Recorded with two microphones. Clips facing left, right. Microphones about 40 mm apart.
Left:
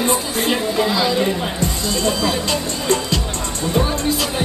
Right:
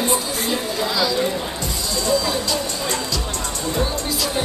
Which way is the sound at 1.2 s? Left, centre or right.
Left.